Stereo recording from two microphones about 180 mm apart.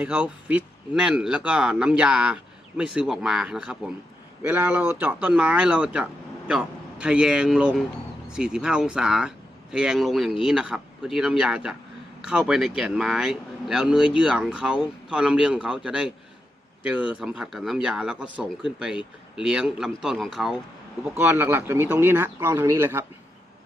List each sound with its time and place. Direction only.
0.0 s speech: 5° right (ahead or behind)
21.2 s speech: 15° right (ahead or behind)